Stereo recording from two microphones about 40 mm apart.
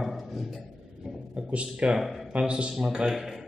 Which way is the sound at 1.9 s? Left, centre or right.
Centre.